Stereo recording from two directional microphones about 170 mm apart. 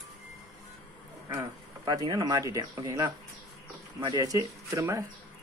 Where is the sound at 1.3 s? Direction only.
25° right (ahead or behind).